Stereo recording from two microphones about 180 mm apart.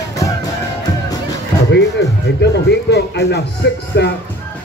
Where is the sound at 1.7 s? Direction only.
70° left (ahead or behind).